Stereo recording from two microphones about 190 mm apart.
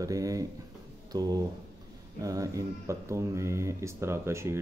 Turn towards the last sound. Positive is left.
turn(degrees=-15)  # may be behind; listen again after turning